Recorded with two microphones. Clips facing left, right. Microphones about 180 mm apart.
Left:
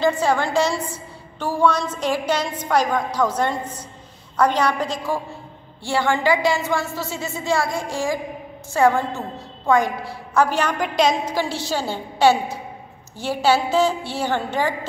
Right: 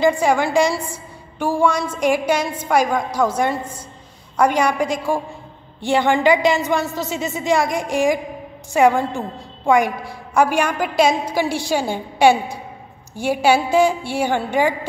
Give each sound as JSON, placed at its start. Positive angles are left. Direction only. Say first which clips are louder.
{"t": 0.0, "sound": "a woman's voice", "louder": "right 3 dB", "side_deg": -15}